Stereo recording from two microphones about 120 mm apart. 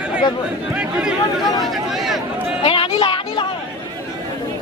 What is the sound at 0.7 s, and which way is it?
Chatter, 5° right (ahead or behind).